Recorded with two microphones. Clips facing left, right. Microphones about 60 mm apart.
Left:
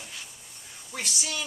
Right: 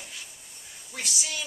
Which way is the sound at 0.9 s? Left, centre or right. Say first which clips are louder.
Left 1 dB; centre.